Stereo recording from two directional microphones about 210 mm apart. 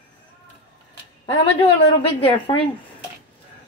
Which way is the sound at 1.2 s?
25° left (ahead or behind).